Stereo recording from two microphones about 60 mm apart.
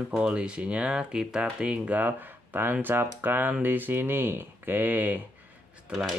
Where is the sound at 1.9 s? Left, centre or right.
Right.